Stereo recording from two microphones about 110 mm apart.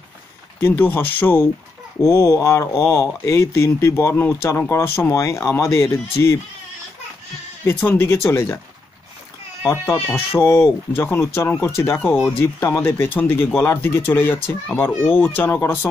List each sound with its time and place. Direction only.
0.6 s speech: 20° left (ahead or behind)
7.6 s speech: 20° left (ahead or behind)
9.6 s speech: 25° left (ahead or behind)